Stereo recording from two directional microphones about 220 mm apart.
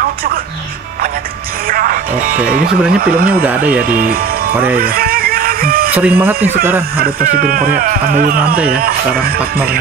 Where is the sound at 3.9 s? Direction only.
40° right (ahead or behind).